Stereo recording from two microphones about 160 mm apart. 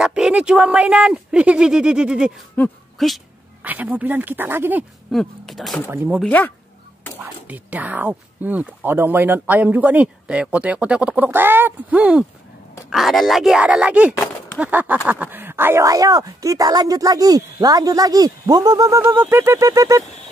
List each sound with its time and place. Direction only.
0.0 s speech: 5° right (ahead or behind)
3.6 s speech: 10° right (ahead or behind)
5.1 s speech: centre (ahead or behind)
5.9 s speech: 10° right (ahead or behind)
6.2 s speech: 10° left (ahead or behind)
7.2 s speech: 10° right (ahead or behind)